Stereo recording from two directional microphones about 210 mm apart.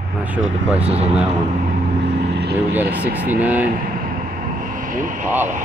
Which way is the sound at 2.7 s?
10° right (ahead or behind).